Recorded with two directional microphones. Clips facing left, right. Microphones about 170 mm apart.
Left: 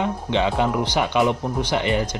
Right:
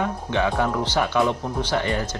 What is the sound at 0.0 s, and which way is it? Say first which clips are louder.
Speech: left 2 dB; 20° left (ahead or behind).